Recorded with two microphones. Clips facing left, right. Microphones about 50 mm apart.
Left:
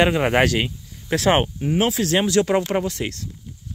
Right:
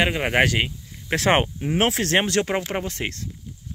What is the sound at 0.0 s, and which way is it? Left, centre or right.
Speech, centre.